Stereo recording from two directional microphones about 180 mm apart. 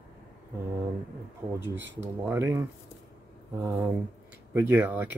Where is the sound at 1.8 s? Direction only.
85° right.